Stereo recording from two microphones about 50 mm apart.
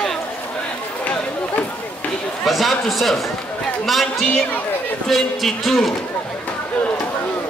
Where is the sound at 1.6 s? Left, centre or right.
Left.